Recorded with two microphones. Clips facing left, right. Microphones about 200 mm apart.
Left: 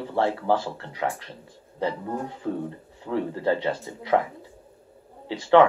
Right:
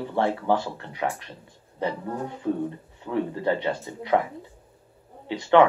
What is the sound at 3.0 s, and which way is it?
Speech, 20° right (ahead or behind).